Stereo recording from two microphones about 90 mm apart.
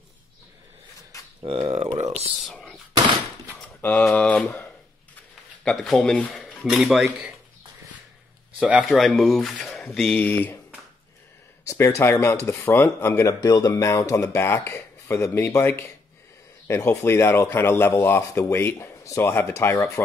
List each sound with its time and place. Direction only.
1.4 s speech: 90° right
2.5 s gunshot: 10° left (ahead or behind)
3.6 s a sound: 15° left (ahead or behind)
5.6 s speech: 5° left (ahead or behind)
8.5 s speech: 10° right (ahead or behind)
8.8 s speech: centre (ahead or behind)
10.1 s speech: 20° left (ahead or behind)
11.6 s speech: 35° left (ahead or behind)